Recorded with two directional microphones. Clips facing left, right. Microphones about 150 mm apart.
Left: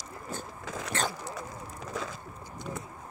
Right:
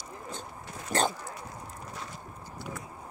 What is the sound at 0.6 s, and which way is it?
Zipper, 90° left.